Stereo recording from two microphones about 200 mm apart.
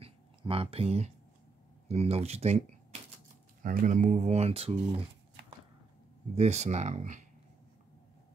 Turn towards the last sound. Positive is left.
turn(degrees=-35)  # may be behind; listen again after turning